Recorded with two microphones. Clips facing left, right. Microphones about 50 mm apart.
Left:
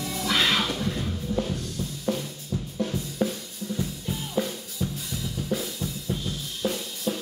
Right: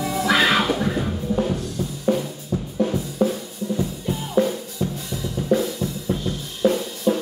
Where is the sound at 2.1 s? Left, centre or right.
Centre.